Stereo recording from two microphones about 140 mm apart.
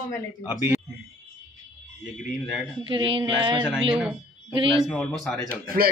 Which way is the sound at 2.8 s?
35° right (ahead or behind).